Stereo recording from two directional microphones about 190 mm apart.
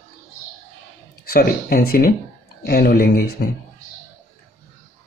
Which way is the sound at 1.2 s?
50° left (ahead or behind).